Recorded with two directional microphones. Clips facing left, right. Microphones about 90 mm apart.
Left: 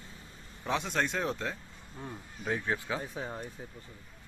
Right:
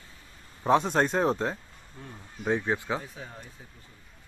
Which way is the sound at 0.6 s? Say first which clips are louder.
Right 8 dB; 40° right (ahead or behind).